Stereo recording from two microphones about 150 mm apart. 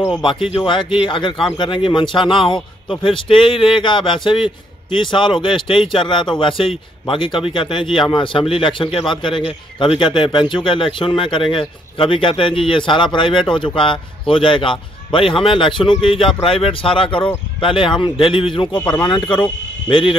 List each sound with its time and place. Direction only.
0.2 s a man's voice: 35° left (ahead or behind)